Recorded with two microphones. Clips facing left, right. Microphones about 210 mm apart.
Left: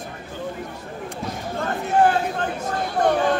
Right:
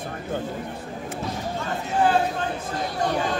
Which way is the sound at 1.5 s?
55° left (ahead or behind).